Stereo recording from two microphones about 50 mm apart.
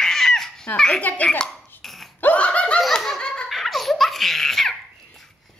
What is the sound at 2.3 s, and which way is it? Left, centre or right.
Laughter, left.